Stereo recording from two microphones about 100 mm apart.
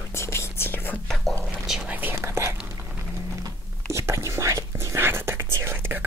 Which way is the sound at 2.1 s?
30° right (ahead or behind).